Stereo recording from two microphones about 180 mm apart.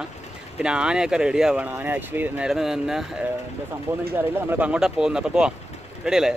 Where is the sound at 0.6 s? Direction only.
5° right (ahead or behind).